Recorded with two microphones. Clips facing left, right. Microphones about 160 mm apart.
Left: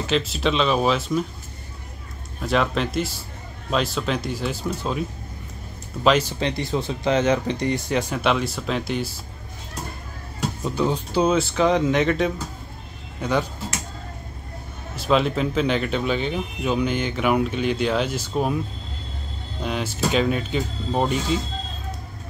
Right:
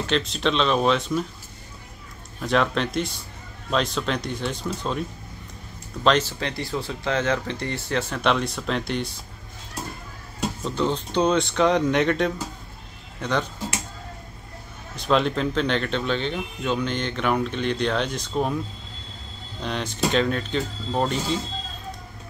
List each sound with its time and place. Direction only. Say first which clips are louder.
0.0 s speech: left 1 dB; 5° left (ahead or behind)
2.4 s speech: even; centre (ahead or behind)
6.0 s speech: left 1 dB; 10° left (ahead or behind)
6.4 s speech: left 4 dB; 20° left (ahead or behind)
8.2 s speech: left 1 dB; 5° left (ahead or behind)
10.6 s speech: left 2 dB; 10° left (ahead or behind)
15.0 s speech: left 1 dB; 5° left (ahead or behind)
19.6 s speech: left 1 dB; 5° left (ahead or behind)